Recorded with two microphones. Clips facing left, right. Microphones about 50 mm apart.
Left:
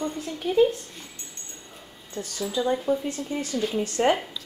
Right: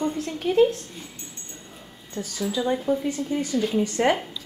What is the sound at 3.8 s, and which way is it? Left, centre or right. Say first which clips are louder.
Speech: left 3 dB; centre.